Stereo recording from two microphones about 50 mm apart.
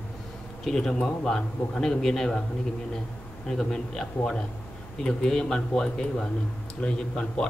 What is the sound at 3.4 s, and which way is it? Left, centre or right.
A man's voice, centre.